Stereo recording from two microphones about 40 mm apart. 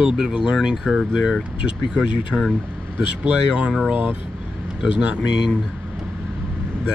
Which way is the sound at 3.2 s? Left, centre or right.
Right.